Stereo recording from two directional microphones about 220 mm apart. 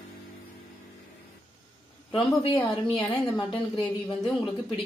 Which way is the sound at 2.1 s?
20° left (ahead or behind).